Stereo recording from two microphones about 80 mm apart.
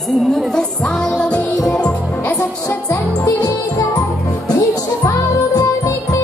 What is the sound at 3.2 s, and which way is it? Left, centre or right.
Music, left.